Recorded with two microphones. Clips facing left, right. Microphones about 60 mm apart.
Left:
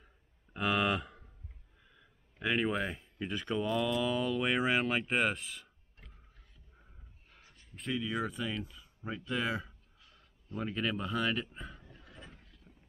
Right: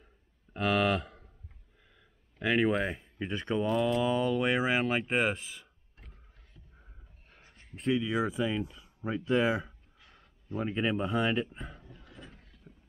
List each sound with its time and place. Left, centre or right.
0.0 s a sound: centre
2.0 s speech: centre; by 4.1 s right
4.1 s speech: centre
7.7 s speech: right
8.0 s speech: centre
9.9 s a sound: right
10.6 s speech: right
11.4 s speech: centre
12.4 s vehicle: centre